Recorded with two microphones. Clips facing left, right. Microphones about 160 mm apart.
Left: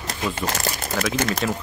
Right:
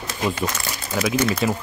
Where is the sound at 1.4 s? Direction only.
10° right (ahead or behind).